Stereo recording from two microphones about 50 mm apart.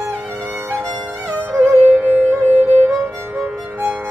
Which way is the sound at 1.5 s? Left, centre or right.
Right.